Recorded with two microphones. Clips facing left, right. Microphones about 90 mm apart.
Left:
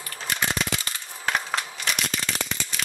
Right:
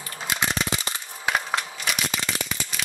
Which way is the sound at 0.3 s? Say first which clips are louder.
Right 1 dB; 15° right (ahead or behind).